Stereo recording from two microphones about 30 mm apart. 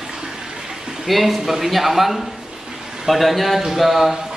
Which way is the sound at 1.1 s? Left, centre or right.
Centre.